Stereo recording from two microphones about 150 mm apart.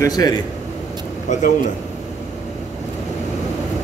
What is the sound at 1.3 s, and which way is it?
Speech, 50° left (ahead or behind).